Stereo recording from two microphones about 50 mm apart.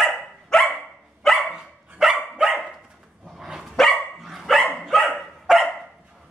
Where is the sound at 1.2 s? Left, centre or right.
Centre.